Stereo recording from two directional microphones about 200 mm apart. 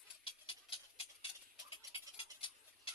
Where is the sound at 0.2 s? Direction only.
25° left (ahead or behind).